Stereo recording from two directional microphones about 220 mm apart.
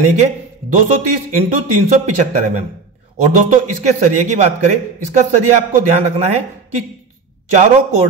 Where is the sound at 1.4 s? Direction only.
35° right (ahead or behind).